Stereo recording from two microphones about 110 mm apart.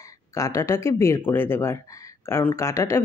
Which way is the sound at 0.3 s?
30° left (ahead or behind).